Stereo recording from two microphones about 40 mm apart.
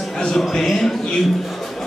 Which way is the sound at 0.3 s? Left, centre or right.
Centre.